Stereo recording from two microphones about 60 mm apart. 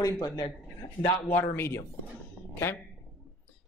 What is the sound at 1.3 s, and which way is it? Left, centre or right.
Speech, left.